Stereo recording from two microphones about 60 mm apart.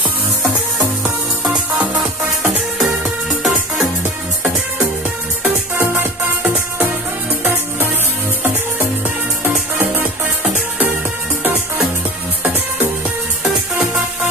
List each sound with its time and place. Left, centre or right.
2.4 s music: centre
9.4 s music: right